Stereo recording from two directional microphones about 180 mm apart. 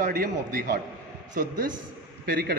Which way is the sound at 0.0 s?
50° right (ahead or behind).